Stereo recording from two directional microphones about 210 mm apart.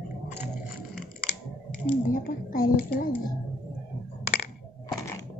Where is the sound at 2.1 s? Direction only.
40° left (ahead or behind).